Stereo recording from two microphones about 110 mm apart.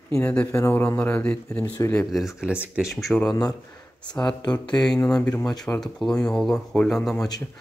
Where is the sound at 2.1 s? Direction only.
5° right (ahead or behind).